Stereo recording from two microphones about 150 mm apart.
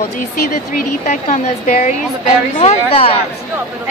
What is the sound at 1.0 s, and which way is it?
A woman's voice, 50° left (ahead or behind).